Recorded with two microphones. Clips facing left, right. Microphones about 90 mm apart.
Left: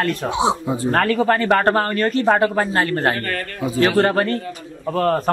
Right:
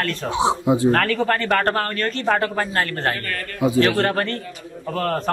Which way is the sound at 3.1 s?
35° left (ahead or behind).